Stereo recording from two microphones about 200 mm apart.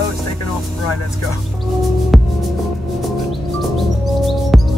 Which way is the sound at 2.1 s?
Centre (ahead or behind).